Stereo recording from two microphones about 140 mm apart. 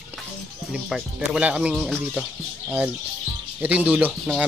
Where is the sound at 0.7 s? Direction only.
5° right (ahead or behind).